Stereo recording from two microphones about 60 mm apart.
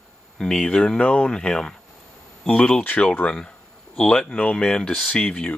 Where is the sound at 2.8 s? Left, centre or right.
Left.